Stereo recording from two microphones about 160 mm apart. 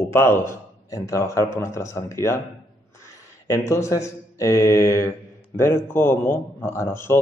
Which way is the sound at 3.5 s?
20° left (ahead or behind).